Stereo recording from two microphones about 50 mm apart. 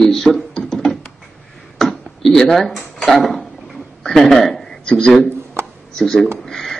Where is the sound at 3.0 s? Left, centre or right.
Centre.